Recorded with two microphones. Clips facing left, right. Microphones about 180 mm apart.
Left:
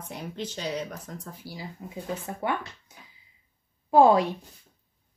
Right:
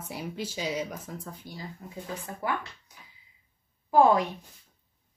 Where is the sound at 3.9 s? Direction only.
25° left (ahead or behind).